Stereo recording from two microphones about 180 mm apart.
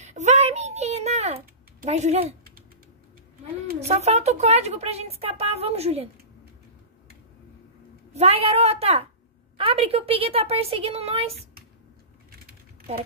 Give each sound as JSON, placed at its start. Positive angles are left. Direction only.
{"t": 0.0, "sound": "a sound", "side_deg": -40}
{"t": 1.9, "sound": "a woman's voice", "side_deg": -40}
{"t": 3.8, "sound": "a woman's voice", "side_deg": -35}
{"t": 8.1, "sound": "a woman's voice", "side_deg": -35}